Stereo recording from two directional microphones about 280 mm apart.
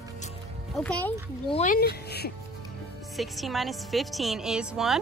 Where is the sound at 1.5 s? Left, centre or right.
Left.